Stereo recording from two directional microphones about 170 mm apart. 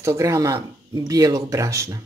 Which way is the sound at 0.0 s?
15° right (ahead or behind).